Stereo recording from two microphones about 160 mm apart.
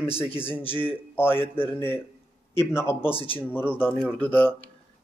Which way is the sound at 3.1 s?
35° left (ahead or behind).